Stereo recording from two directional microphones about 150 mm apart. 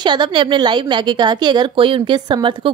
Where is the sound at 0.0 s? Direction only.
30° right (ahead or behind).